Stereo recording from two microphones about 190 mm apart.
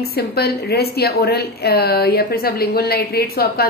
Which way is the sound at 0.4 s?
55° left (ahead or behind).